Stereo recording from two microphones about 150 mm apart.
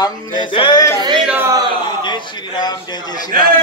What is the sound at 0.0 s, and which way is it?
Music, 30° left (ahead or behind).